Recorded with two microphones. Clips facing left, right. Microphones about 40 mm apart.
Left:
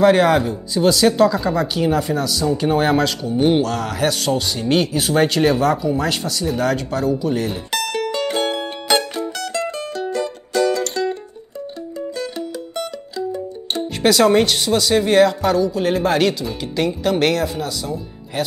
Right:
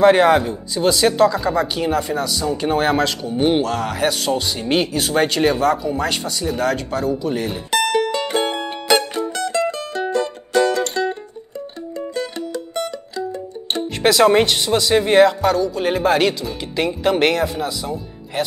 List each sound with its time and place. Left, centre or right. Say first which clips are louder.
0.0 s speech: right 1 dB; centre
7.9 s music: right 2 dB; centre
10.1 s music: right 3 dB; right
13.7 s speech: even; centre
15.4 s speech: even; centre